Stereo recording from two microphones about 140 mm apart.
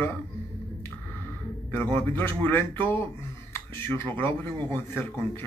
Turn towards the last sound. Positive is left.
turn(degrees=15)  # may be behind; listen again after turning